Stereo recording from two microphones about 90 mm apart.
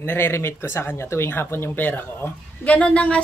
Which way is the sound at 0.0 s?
25° left (ahead or behind).